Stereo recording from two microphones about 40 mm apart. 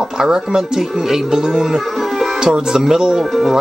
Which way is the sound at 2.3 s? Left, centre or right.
Centre.